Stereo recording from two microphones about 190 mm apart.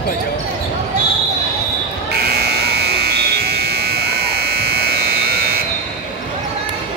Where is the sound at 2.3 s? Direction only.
55° right (ahead or behind).